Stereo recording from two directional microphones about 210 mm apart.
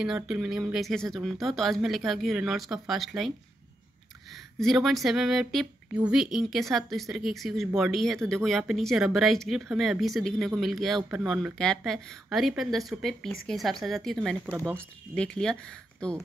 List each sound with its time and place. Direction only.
0.0 s speech: 5° right (ahead or behind)
14.4 s speech: 10° right (ahead or behind)
14.8 s speech: 5° left (ahead or behind)